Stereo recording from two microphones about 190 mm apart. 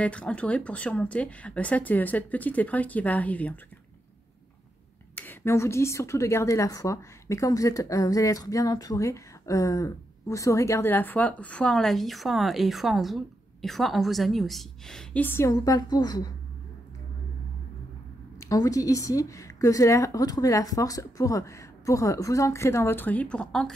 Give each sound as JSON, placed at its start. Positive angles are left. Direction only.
{"t": 0.0, "sound": "a woman's voice", "side_deg": 5}
{"t": 5.1, "sound": "a woman's voice", "side_deg": 10}
{"t": 18.4, "sound": "a woman's voice", "side_deg": 20}